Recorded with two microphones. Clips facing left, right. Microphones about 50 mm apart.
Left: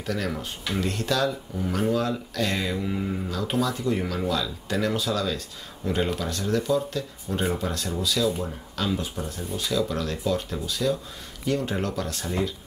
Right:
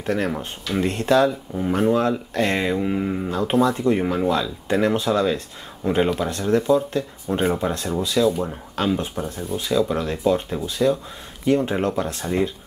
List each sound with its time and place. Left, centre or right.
0.0 s speech: right